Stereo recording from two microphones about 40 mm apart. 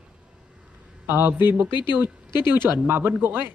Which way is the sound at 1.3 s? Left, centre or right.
Right.